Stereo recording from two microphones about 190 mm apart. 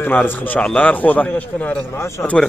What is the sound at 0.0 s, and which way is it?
A man's voice, 10° left (ahead or behind).